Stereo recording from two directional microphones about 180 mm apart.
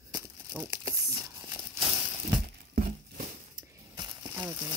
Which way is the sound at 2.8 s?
50° right (ahead or behind).